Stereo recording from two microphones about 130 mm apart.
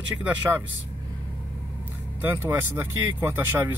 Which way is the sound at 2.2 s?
15° right (ahead or behind).